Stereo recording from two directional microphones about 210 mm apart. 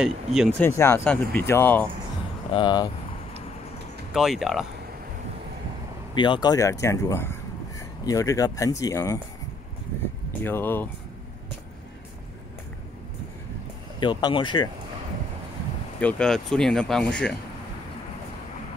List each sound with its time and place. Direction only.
0.0 s speech: 5° right (ahead or behind)
0.6 s speech: 10° left (ahead or behind)
2.5 s speech: 20° left (ahead or behind)
4.1 s speech: centre (ahead or behind)
6.1 s speech: 20° left (ahead or behind)
10.4 s speech: 10° left (ahead or behind)
13.9 s speech: 20° left (ahead or behind)
16.0 s speech: 5° left (ahead or behind)